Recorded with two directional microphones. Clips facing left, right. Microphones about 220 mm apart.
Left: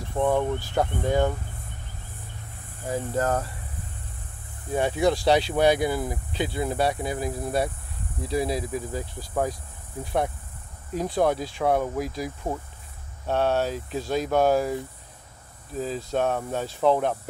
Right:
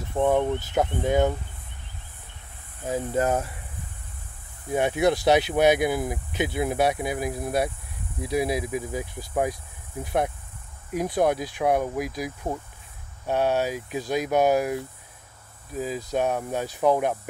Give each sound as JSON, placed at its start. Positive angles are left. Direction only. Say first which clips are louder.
{"t": 0.2, "sound": "speech", "louder": "right 1 dB", "side_deg": -20}
{"t": 2.9, "sound": "speech", "louder": "right 1 dB", "side_deg": -15}
{"t": 4.7, "sound": "speech", "louder": "right 1 dB", "side_deg": -15}